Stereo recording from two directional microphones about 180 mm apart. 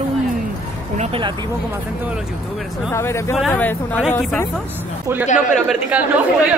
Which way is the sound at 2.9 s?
15° left (ahead or behind).